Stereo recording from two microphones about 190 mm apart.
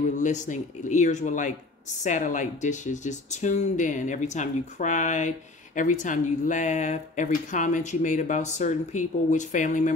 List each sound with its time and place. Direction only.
0.0 s speech: 40° left (ahead or behind)